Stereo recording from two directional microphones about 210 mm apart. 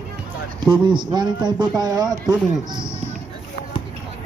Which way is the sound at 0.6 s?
20° right (ahead or behind).